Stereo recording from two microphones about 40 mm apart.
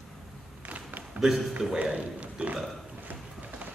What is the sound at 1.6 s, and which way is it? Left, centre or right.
Speech, centre.